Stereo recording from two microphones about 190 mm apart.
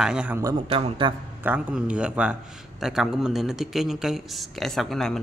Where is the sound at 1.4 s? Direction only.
5° right (ahead or behind).